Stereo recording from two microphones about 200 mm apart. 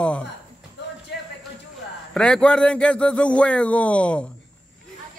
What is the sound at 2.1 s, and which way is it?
Speech, 5° left (ahead or behind).